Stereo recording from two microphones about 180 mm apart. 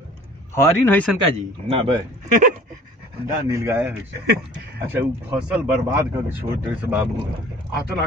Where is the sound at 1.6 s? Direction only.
30° right (ahead or behind).